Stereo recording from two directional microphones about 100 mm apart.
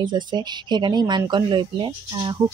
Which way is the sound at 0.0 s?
50° right (ahead or behind).